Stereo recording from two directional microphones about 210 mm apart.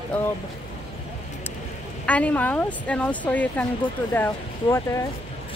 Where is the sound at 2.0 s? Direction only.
5° left (ahead or behind).